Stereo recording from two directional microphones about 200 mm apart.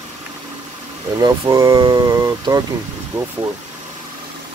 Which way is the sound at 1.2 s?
20° right (ahead or behind).